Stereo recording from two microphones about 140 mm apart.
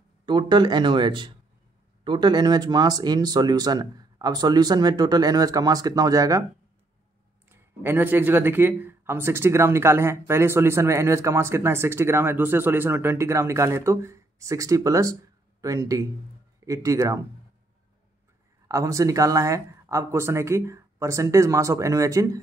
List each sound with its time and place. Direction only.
0.2 s speech: 35° right (ahead or behind)
7.4 s speech: 15° right (ahead or behind)
18.7 s speech: 25° right (ahead or behind)